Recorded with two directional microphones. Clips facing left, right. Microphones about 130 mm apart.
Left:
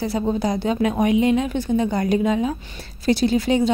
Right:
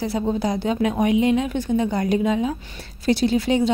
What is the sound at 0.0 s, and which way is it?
A woman's voice, 40° left (ahead or behind).